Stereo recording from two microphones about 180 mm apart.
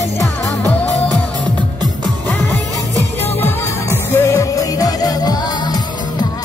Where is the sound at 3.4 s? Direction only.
15° left (ahead or behind).